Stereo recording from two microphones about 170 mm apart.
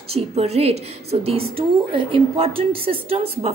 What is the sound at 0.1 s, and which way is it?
A woman's voice, 40° right (ahead or behind).